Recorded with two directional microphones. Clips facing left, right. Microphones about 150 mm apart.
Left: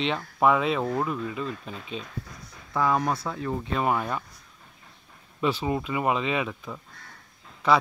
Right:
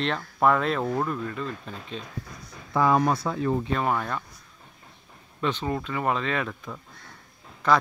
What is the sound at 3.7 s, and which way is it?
Speech, 10° left (ahead or behind).